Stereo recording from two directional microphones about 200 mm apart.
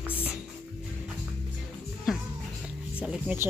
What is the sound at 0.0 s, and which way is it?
Music, 10° left (ahead or behind).